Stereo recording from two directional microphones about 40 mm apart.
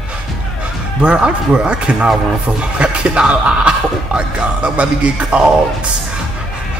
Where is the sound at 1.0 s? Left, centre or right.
Right.